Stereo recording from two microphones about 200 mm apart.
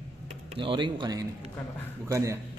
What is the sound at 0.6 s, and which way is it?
Speech, 25° right (ahead or behind).